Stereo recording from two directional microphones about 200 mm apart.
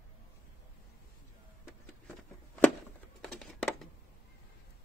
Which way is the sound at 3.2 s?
5° left (ahead or behind).